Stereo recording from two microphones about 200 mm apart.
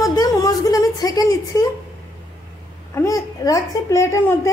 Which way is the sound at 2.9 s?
15° left (ahead or behind).